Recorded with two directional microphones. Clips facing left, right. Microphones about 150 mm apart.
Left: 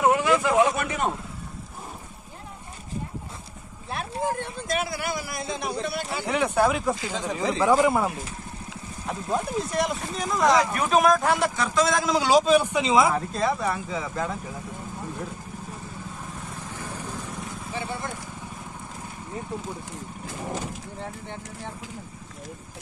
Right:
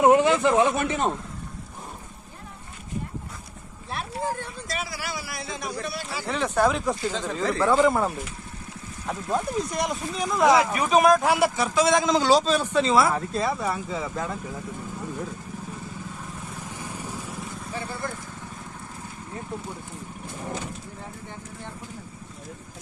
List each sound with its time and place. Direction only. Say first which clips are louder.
0.0 s speech: right 3 dB; 25° right (ahead or behind)
3.9 s speech: left 2 dB; 20° left (ahead or behind); by 7.0 s 5° left (ahead or behind)
7.1 s speech: right 1 dB; 15° left (ahead or behind)
13.1 s speech: left 1 dB; centre (ahead or behind)
16.7 s vehicle: left 2 dB; 15° right (ahead or behind)